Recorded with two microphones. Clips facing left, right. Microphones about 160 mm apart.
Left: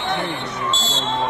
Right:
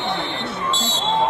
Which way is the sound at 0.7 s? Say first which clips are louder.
Even; 15° right (ahead or behind).